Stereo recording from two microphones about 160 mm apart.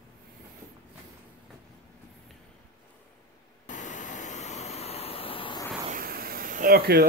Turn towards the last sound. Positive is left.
turn(degrees=-75)  # may be behind; listen again after turning